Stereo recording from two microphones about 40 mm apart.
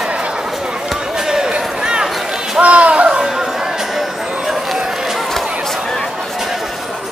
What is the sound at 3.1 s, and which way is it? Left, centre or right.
Music, centre.